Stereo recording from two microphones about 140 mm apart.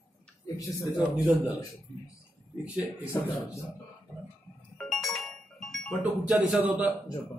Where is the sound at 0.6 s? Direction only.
25° left (ahead or behind).